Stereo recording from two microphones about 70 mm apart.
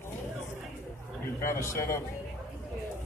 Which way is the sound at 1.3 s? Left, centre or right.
Left.